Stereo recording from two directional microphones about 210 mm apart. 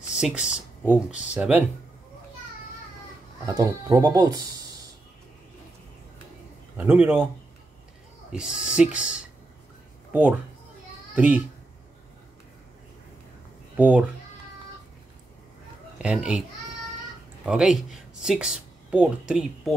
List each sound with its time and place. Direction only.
0.2 s speech: 5° right (ahead or behind)
3.4 s speech: 15° right (ahead or behind)
6.8 s speech: 10° right (ahead or behind)
8.3 s speech: 5° right (ahead or behind)
13.7 s speech: 5° right (ahead or behind)
16.0 s speech: 5° right (ahead or behind)
17.5 s speech: centre (ahead or behind)